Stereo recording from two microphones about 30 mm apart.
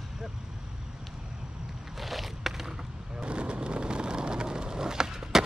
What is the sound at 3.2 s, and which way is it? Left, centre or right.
Vehicle, right.